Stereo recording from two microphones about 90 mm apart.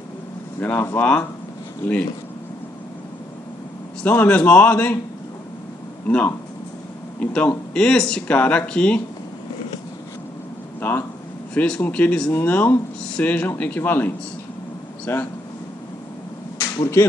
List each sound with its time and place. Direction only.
0.6 s speech: 20° left (ahead or behind)
4.0 s speech: 20° left (ahead or behind)
6.0 s speech: 15° left (ahead or behind)
10.8 s speech: 25° left (ahead or behind)
11.5 s speech: 15° left (ahead or behind)
16.5 s arrow: 35° left (ahead or behind)